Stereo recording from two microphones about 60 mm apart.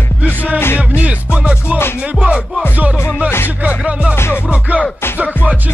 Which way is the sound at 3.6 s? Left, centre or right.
Right.